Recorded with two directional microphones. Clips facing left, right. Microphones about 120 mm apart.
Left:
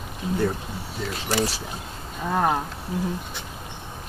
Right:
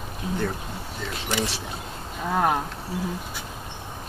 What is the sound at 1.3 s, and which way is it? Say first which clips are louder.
Speech: left 3 dB; 40° left (ahead or behind).